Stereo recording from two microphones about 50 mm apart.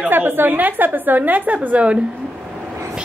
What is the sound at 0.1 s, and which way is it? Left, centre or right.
A woman's voice, right.